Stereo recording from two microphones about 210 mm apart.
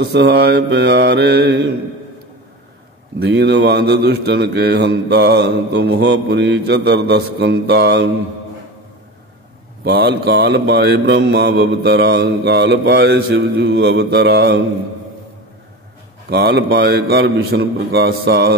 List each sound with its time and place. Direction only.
0.0 s speech: 50° right (ahead or behind)
3.2 s speech: 55° right (ahead or behind)
9.8 s speech: 50° right (ahead or behind)
16.3 s speech: 50° right (ahead or behind)